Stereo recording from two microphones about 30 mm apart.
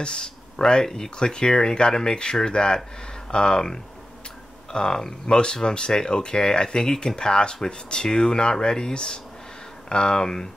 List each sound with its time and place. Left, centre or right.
0.0 s speech: left
0.8 s speech: centre
1.1 s speech: left